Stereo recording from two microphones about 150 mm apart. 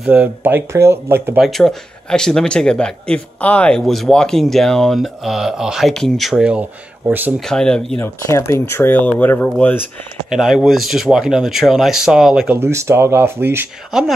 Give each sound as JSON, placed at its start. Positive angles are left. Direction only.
{"t": 0.0, "sound": "speech", "side_deg": -10}
{"t": 1.4, "sound": "speech", "side_deg": 0}
{"t": 7.3, "sound": "speech", "side_deg": 5}
{"t": 8.0, "sound": "speech", "side_deg": 20}
{"t": 10.3, "sound": "speech", "side_deg": 0}
{"t": 12.5, "sound": "speech", "side_deg": -15}